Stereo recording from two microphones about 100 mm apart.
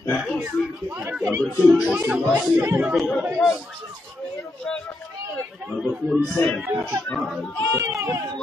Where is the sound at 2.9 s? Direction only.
Centre (ahead or behind).